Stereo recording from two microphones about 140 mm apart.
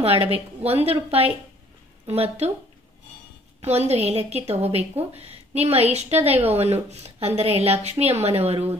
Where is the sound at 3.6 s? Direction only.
50° right (ahead or behind).